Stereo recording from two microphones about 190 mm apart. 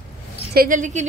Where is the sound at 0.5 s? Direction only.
45° right (ahead or behind).